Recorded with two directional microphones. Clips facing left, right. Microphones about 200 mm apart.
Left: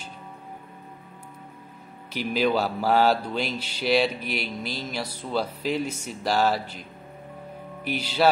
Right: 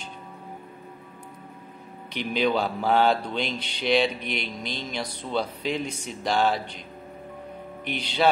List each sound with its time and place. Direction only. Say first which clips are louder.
2.1 s speech: left 1 dB; 5° left (ahead or behind)
7.8 s speech: left 2 dB; 5° left (ahead or behind)